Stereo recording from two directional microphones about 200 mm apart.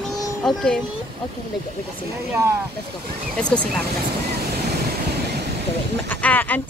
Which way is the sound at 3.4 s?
5° left (ahead or behind).